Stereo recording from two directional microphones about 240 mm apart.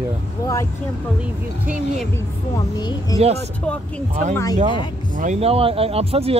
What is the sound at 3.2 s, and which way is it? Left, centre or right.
Speech, right.